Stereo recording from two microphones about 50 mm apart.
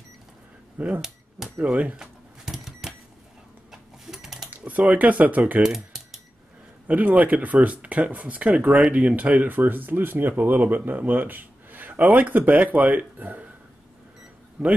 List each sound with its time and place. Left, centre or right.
0.7 s speech: right
2.0 s cash register: centre
3.7 s sewing machine: centre
4.5 s speech: right
5.6 s typing: centre
6.9 s speech: right
14.6 s a man's voice: centre